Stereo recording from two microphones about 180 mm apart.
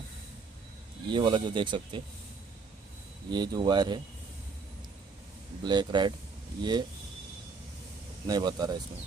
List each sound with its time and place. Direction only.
1.0 s speech: 25° right (ahead or behind)
3.3 s speech: 25° right (ahead or behind)
5.6 s speech: 25° right (ahead or behind)
8.3 s speech: 25° right (ahead or behind)